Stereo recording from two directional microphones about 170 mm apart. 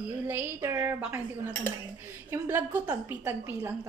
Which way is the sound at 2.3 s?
15° right (ahead or behind).